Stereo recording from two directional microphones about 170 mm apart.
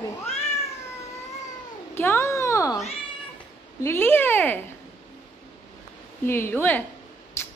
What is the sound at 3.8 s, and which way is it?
Speech, 15° left (ahead or behind).